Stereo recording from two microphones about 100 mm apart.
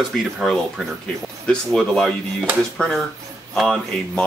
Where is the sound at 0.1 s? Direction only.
Centre (ahead or behind).